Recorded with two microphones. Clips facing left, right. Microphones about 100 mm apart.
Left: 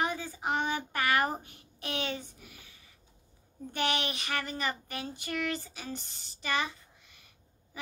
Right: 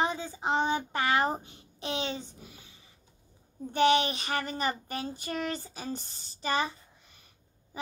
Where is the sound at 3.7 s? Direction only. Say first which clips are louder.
Right 8 dB; 30° right (ahead or behind).